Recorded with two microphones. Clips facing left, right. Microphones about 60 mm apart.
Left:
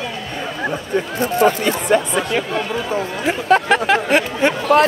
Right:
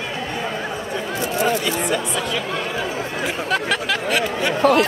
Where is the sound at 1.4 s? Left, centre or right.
Left.